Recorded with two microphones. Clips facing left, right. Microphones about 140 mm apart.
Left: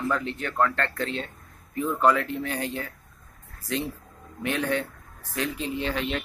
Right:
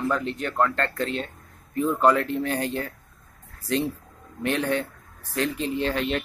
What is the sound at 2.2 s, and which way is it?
Speech, 35° right (ahead or behind).